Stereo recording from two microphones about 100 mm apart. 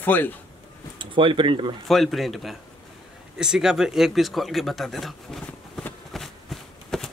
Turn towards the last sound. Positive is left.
turn(degrees=5)  # may be behind; listen again after turning